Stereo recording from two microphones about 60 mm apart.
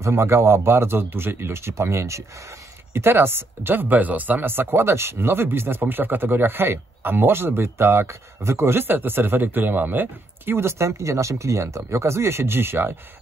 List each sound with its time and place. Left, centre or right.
0.0 s speech: right
2.9 s speech: right